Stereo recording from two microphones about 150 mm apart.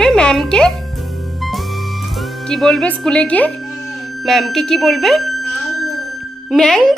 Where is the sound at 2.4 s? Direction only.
Centre (ahead or behind).